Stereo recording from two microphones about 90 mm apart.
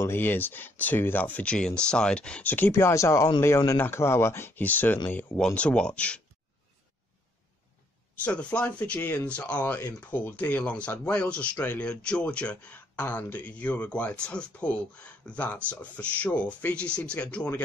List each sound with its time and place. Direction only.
0.0 s speech: 25° left (ahead or behind)
2.7 s speech: 35° left (ahead or behind); by 6.2 s 10° left (ahead or behind)
8.2 s speech: 15° left (ahead or behind)